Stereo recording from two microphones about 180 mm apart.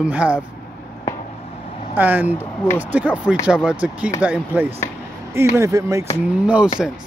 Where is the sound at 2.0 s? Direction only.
10° right (ahead or behind).